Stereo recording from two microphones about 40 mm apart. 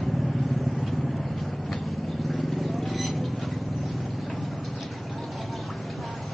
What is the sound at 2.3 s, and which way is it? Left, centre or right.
Vehicle, centre.